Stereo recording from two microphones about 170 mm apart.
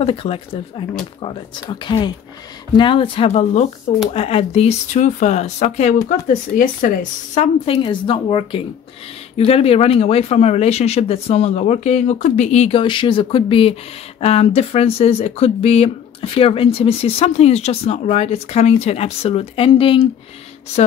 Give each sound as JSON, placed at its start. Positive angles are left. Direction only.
{"t": 0.0, "sound": "speech", "side_deg": 35}
{"t": 7.6, "sound": "speech", "side_deg": 30}